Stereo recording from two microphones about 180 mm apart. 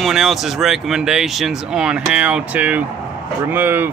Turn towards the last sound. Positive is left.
turn(degrees=-10)  # may be behind; listen again after turning